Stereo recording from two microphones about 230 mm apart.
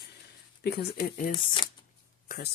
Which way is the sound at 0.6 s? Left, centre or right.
Left.